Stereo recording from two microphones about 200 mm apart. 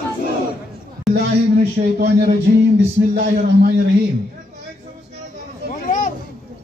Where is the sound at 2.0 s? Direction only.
55° right (ahead or behind).